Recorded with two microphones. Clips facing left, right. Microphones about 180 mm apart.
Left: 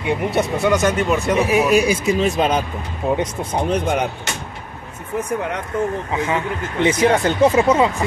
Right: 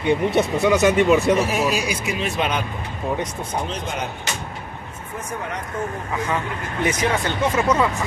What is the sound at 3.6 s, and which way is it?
Speech, 60° left (ahead or behind).